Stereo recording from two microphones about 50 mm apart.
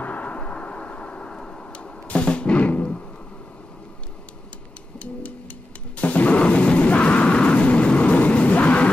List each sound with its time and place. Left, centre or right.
0.0 s a sound: left
1.3 s music: centre
4.9 s music: left